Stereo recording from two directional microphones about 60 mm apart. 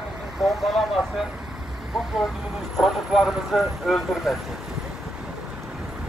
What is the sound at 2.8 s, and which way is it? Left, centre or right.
Speech, centre.